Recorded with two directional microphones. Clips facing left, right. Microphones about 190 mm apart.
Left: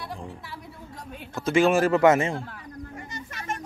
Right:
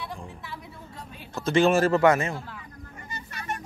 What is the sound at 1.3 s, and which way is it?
A man's voice, 10° left (ahead or behind).